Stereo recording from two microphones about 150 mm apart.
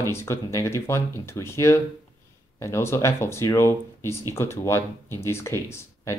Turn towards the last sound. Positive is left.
turn(degrees=20)  # may be behind; listen again after turning